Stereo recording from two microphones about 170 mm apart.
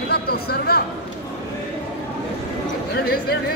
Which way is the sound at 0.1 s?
65° left (ahead or behind).